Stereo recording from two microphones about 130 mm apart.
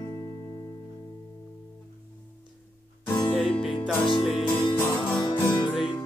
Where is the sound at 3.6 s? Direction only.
40° left (ahead or behind).